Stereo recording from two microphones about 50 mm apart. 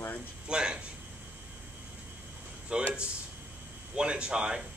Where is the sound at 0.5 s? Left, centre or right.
Centre.